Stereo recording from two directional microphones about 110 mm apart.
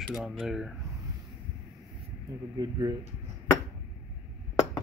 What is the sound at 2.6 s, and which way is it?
Speech, 40° right (ahead or behind).